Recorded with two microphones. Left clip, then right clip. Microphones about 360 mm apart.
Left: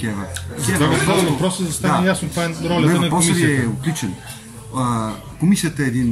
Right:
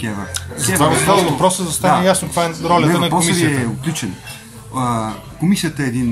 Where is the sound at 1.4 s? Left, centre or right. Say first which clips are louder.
Right 7 dB; centre.